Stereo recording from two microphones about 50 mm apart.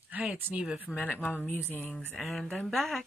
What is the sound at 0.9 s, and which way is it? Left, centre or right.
Speech, left.